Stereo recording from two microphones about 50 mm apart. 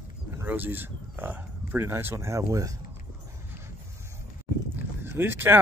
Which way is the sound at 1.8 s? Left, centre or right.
Right.